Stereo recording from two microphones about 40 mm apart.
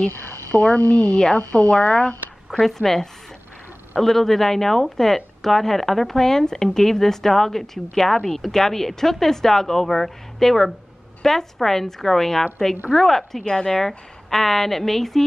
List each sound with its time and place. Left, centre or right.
0.5 s speech: left
1.1 s a woman's voice: left
2.6 s speech: centre
13.5 s a woman's voice: left
13.7 s speech: centre